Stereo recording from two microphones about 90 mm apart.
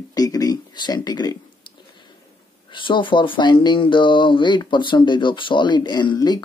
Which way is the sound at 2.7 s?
65° left (ahead or behind).